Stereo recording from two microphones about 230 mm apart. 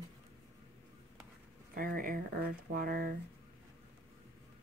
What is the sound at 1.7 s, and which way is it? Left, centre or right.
Speech, right.